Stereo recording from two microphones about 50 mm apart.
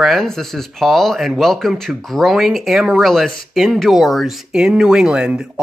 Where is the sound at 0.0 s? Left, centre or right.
Centre.